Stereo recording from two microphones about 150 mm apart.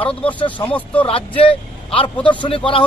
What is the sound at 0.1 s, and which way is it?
Speech, 10° left (ahead or behind).